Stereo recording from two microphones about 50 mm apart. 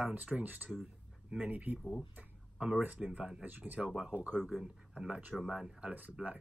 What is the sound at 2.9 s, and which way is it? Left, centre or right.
Speech, right.